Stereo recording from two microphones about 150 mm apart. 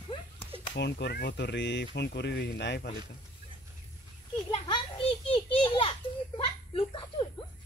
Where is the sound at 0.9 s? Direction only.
90° left.